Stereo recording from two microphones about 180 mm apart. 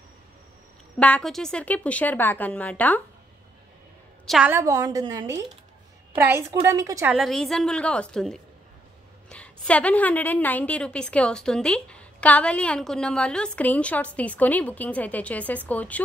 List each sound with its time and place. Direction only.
0.9 s a woman's voice: 5° left (ahead or behind)
4.3 s a woman's voice: 10° right (ahead or behind)
7.2 s a woman's voice: centre (ahead or behind)